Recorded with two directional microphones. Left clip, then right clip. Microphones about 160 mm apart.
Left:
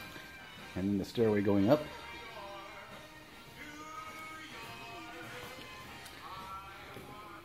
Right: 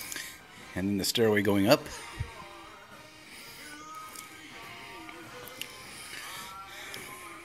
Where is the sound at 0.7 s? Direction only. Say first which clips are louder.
Right 6 dB; 20° right (ahead or behind).